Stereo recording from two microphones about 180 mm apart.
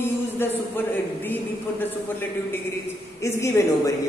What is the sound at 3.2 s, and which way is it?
Speech, 15° left (ahead or behind).